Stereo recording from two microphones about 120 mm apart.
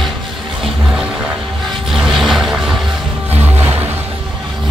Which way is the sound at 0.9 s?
5° right (ahead or behind).